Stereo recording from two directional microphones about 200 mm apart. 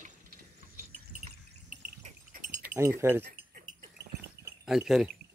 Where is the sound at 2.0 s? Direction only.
40° right (ahead or behind).